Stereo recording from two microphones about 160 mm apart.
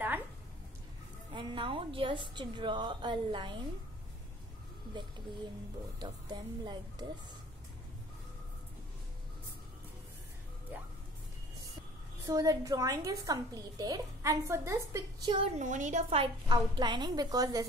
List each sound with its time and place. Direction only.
1.3 s a woman's voice: 30° right (ahead or behind)
5.9 s a woman's voice: 25° right (ahead or behind)
12.3 s a woman's voice: 20° right (ahead or behind)
15.5 s a woman's voice: 50° right (ahead or behind); by 17.6 s 20° right (ahead or behind)